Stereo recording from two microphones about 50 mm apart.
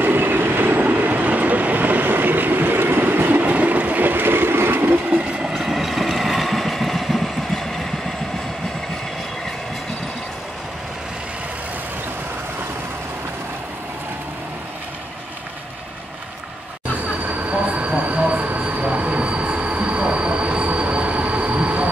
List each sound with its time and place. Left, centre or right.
0.0 s train: right
5.1 s vehicle: centre
5.5 s vehicle: centre
17.2 s train: right